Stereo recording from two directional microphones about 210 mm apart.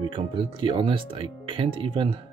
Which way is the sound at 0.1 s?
25° right (ahead or behind).